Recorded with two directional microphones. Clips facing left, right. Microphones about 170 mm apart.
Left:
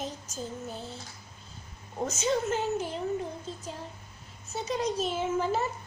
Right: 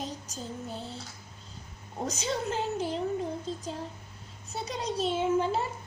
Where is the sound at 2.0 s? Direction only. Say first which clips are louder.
Left 3 dB; 35° right (ahead or behind).